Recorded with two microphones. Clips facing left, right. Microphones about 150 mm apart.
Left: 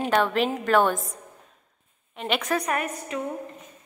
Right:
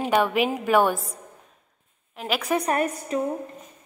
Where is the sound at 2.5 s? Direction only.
30° right (ahead or behind).